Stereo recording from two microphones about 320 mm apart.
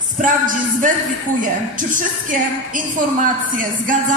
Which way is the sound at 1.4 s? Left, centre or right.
Right.